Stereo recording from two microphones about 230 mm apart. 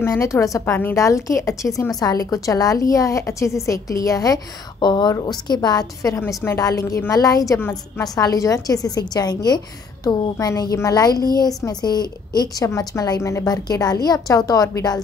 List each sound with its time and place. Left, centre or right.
0.0 s a woman's voice: centre